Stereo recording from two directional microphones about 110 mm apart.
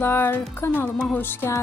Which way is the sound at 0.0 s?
20° left (ahead or behind).